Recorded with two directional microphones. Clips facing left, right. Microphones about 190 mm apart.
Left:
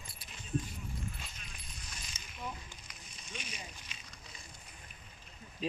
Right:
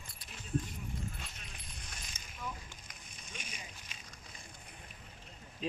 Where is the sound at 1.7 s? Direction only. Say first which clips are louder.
Even; 60° right (ahead or behind).